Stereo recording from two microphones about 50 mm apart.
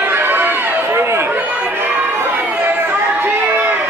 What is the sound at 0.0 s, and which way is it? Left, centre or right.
Run, right.